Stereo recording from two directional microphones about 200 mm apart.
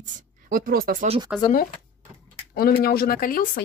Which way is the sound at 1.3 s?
5° right (ahead or behind).